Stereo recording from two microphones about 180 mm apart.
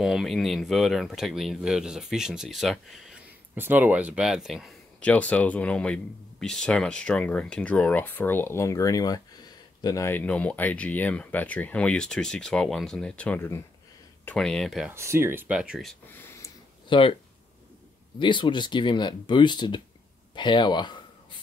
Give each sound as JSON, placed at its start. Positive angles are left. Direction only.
{"t": 0.0, "sound": "speech", "side_deg": 0}
{"t": 14.9, "sound": "speech", "side_deg": -15}
{"t": 16.9, "sound": "speech", "side_deg": 25}
{"t": 18.2, "sound": "speech", "side_deg": 25}
{"t": 20.3, "sound": "a sound", "side_deg": 25}